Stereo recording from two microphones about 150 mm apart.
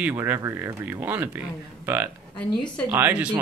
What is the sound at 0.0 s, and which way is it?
Speech, 15° right (ahead or behind).